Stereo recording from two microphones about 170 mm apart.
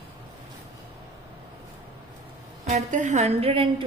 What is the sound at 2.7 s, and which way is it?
A woman's voice, 45° right (ahead or behind).